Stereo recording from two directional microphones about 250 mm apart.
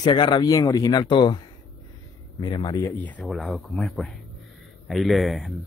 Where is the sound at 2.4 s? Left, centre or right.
Centre.